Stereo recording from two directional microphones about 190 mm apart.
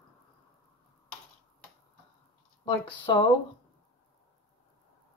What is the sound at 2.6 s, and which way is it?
Speech, 25° left (ahead or behind).